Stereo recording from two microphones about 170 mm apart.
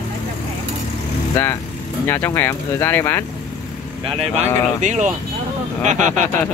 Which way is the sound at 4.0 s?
40° right (ahead or behind).